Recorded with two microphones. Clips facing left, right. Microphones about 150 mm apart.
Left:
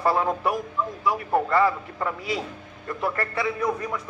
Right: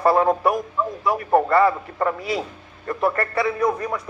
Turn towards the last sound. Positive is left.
turn(degrees=-50)  # may be behind; listen again after turning